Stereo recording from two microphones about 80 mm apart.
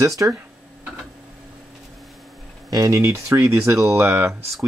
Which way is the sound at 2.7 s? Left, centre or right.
Right.